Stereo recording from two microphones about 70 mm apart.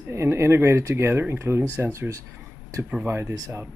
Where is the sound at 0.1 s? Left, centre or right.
Right.